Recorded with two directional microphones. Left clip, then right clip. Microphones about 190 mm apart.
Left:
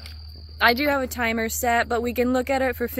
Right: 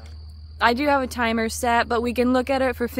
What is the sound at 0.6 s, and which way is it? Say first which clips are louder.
Speech: even; 10° right (ahead or behind).